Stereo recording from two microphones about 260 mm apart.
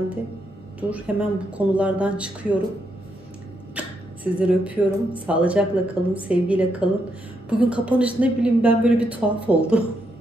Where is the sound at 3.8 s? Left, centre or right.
Centre.